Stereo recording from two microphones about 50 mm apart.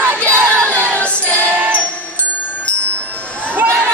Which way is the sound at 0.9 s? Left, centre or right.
Left.